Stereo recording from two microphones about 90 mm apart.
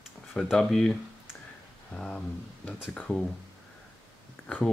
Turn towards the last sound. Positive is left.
turn(degrees=10)  # may be behind; listen again after turning